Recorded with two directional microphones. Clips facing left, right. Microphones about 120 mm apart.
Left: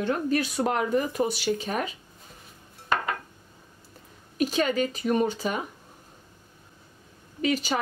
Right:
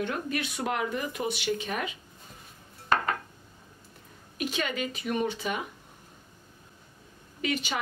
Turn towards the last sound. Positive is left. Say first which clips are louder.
# left 5 dB
turn(degrees=35)  # may be behind; listen again after turning